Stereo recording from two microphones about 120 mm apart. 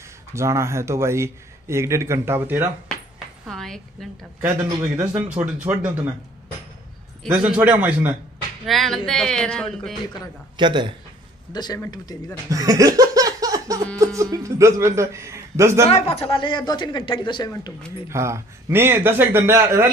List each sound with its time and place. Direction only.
0.3 s speech: 25° right (ahead or behind)
3.4 s a woman's voice: 5° left (ahead or behind)
4.8 s speech: 10° right (ahead or behind)
7.3 s speech: 10° right (ahead or behind)
8.6 s speech: centre (ahead or behind)
10.6 s a man's voice: 40° right (ahead or behind)
11.5 s speech: 35° left (ahead or behind)
12.4 s laughter: 30° right (ahead or behind)
13.9 s speech: 25° right (ahead or behind)
15.9 s speech: 55° left (ahead or behind)
18.0 s speech: 25° right (ahead or behind)